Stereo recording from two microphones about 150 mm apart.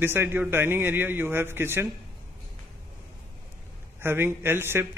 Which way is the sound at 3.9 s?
15° right (ahead or behind).